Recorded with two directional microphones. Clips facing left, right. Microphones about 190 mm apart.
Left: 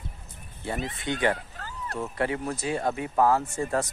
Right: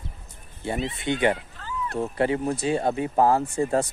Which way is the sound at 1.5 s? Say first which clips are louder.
Right 6 dB; 45° left (ahead or behind).